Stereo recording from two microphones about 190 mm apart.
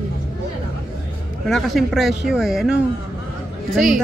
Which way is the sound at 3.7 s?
Centre (ahead or behind).